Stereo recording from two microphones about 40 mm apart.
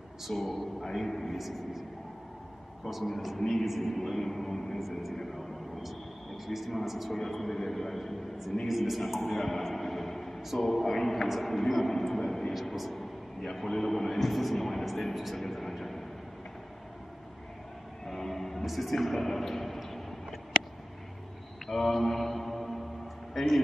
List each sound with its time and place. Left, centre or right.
0.3 s a man's voice: centre
2.9 s a man's voice: centre
3.9 s a man's voice: centre
5.1 s a man's voice: centre
5.4 s a sound: centre
7.2 s a man's voice: centre
18.0 s music: centre
21.6 s mantra: centre
23.3 s speech: centre